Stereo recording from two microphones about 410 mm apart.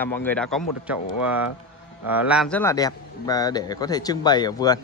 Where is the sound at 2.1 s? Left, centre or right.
Centre.